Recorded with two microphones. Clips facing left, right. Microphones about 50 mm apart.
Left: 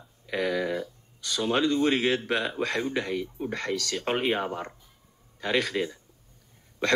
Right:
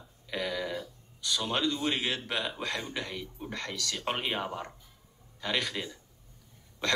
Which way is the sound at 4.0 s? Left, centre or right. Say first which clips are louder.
Left 5 dB; left.